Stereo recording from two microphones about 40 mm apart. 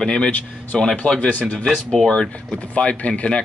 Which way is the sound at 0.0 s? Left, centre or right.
Left.